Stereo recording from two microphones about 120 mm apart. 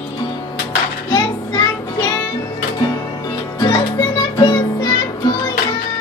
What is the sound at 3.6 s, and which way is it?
Music, 35° left (ahead or behind).